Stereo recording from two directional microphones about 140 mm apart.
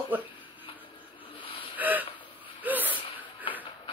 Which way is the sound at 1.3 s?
40° left (ahead or behind).